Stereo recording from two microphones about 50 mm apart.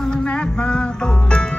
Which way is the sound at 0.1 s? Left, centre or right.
Centre.